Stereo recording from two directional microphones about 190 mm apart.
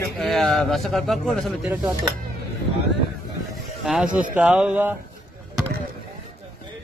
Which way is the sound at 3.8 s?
Centre (ahead or behind).